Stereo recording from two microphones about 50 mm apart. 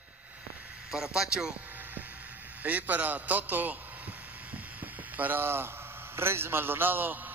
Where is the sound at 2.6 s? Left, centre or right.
Right.